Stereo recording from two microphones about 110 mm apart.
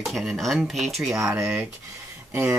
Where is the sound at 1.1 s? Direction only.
25° right (ahead or behind).